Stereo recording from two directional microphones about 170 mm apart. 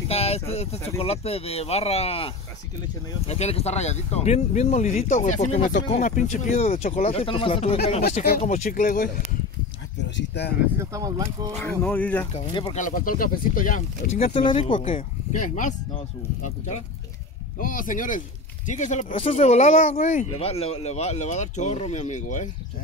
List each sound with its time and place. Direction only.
0.1 s a sound: 35° left (ahead or behind)
0.5 s speech: 35° left (ahead or behind)
8.1 s speech: 50° left (ahead or behind)
9.9 s speech: 90° left
10.8 s speech: 20° right (ahead or behind)
11.8 s speech: 10° left (ahead or behind)
12.3 s speech: 35° left (ahead or behind)
12.7 s speech: 50° left (ahead or behind)
14.5 s speech: 30° left (ahead or behind)
14.8 s speech: 45° left (ahead or behind)
17.6 s speech: 55° left (ahead or behind)